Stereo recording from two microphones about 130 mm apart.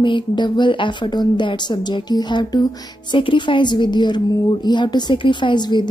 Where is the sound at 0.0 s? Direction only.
35° left (ahead or behind).